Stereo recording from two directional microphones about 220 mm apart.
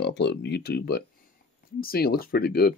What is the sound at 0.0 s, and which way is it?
Speech, 50° left (ahead or behind).